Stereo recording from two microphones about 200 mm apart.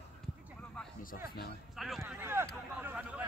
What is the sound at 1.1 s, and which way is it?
Speech, 50° left (ahead or behind).